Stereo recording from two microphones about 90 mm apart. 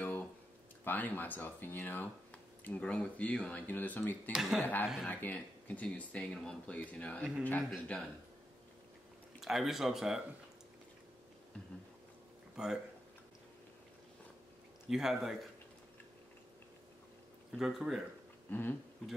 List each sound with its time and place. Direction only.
0.0 s a sound: 20° left (ahead or behind)
0.8 s speech: 20° left (ahead or behind)
4.3 s speech: 5° right (ahead or behind)
4.6 s speech: 20° left (ahead or behind)
9.4 s speech: 5° right (ahead or behind)
12.6 s speech: 10° right (ahead or behind)
14.9 s speech: 5° right (ahead or behind)
17.5 s speech: centre (ahead or behind)
18.5 s speech: 20° left (ahead or behind)